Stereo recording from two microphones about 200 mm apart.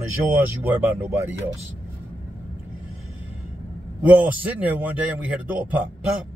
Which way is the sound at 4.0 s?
5° right (ahead or behind).